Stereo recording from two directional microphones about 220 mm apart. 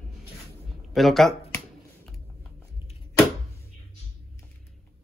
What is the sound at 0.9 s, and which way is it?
Speech, centre (ahead or behind).